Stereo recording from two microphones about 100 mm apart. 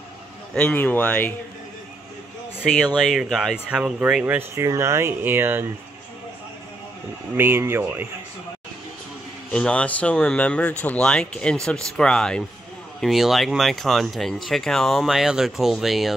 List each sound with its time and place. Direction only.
0.6 s speech: 20° left (ahead or behind)
2.6 s speech: 5° left (ahead or behind); by 4.5 s 15° right (ahead or behind)
4.6 s speech: 30° right (ahead or behind)
7.3 s speech: 25° right (ahead or behind)
9.5 s speech: 10° left (ahead or behind)